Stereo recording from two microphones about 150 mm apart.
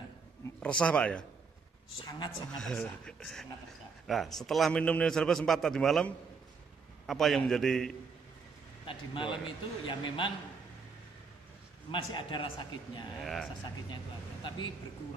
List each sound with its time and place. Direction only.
0.6 s speech: 5° left (ahead or behind)
2.0 s a man's voice: 25° left (ahead or behind)
2.5 s a man's voice: 5° left (ahead or behind)
8.8 s a man's voice: 35° left (ahead or behind)
11.9 s a man's voice: 35° left (ahead or behind)
13.2 s a man's voice: centre (ahead or behind)